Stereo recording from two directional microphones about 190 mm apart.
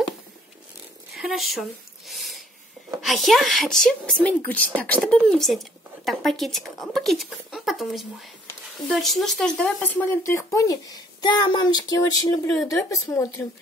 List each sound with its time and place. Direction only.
1.1 s speech: centre (ahead or behind)
2.0 s a sound: centre (ahead or behind)
3.0 s a woman's voice: centre (ahead or behind)